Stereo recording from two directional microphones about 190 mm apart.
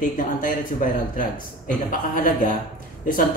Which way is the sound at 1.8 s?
45° left (ahead or behind).